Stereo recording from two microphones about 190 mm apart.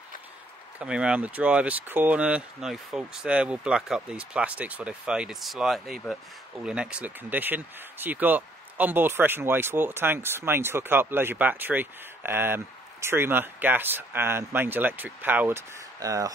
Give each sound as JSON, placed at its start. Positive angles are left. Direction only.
{"t": 0.7, "sound": "speech", "side_deg": -5}